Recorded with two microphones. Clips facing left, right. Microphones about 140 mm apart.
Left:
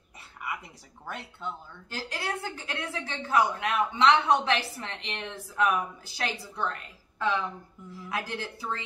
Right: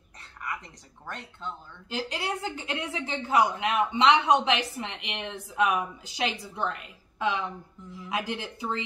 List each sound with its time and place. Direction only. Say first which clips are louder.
0.4 s a sound: even; 10° left (ahead or behind)
1.0 s speech: left 1 dB; 10° left (ahead or behind)
1.9 s a woman's voice: right 3 dB; 20° right (ahead or behind)